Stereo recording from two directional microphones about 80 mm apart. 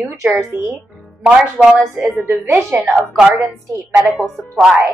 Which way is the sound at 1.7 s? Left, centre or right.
Centre.